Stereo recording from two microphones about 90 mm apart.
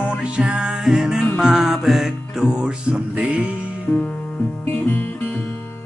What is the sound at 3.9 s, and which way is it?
Music, 5° left (ahead or behind).